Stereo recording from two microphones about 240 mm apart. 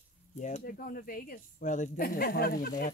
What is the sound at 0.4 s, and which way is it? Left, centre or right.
Speech, left.